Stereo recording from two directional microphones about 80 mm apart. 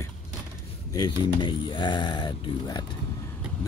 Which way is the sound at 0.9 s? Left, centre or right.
Left.